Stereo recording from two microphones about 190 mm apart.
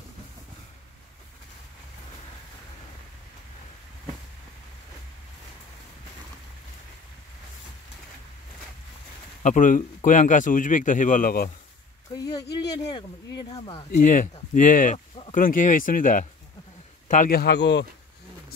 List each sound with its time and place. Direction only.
9.4 s speech: 45° left (ahead or behind)
12.2 s a sound: 20° left (ahead or behind)
12.5 s speech: 20° left (ahead or behind)
13.9 s a man's voice: 45° left (ahead or behind); by 17.8 s 65° left (ahead or behind)